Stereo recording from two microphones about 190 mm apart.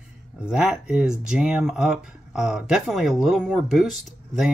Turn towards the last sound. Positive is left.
turn(degrees=0)  # may be behind; listen again after turning